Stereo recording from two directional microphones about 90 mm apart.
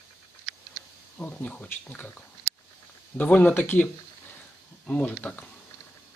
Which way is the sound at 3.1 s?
15° left (ahead or behind).